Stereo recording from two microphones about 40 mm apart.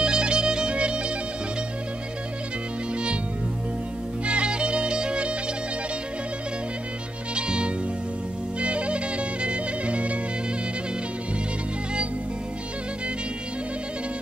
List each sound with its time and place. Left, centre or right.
0.0 s music: right
4.3 s music: right
7.3 s music: right